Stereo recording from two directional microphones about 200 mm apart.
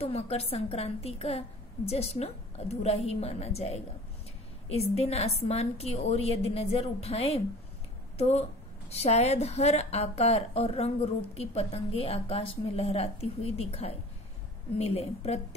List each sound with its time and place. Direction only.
0.0 s a woman's voice: 30° left (ahead or behind)